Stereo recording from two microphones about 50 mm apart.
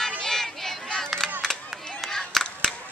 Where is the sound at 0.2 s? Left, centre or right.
Centre.